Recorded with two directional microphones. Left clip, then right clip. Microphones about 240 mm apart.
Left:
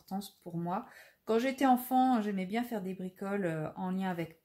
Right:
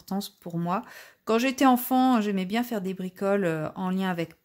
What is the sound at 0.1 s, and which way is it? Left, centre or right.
Speech, right.